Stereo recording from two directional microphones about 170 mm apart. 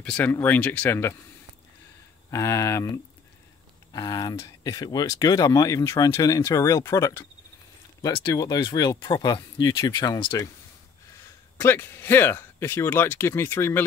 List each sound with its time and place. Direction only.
0.0 s speech: 10° left (ahead or behind)
2.3 s speech: 20° left (ahead or behind)
11.5 s speech: 15° left (ahead or behind)